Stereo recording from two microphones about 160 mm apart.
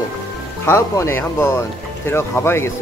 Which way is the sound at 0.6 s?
15° left (ahead or behind).